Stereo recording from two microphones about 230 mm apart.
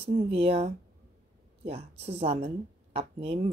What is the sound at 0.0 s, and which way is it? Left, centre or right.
A woman's voice, right.